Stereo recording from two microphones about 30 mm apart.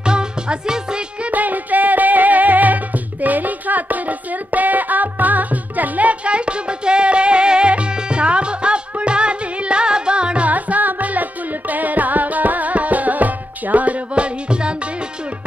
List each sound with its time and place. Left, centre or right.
0.0 s music: right
1.3 s music: right
6.2 s music: right
10.5 s music: right
14.1 s music: right